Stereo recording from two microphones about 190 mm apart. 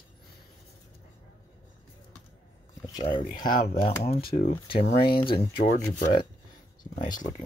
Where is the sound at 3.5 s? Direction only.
50° left (ahead or behind).